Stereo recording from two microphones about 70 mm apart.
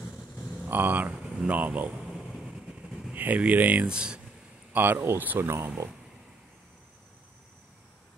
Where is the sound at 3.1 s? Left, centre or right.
Right.